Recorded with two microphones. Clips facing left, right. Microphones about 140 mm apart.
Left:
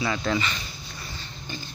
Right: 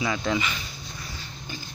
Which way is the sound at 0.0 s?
10° right (ahead or behind).